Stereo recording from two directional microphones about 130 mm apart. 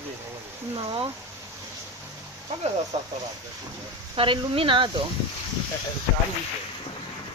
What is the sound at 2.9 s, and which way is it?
Speech, 55° right (ahead or behind).